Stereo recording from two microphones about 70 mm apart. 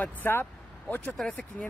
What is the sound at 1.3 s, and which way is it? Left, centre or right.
Speech, centre.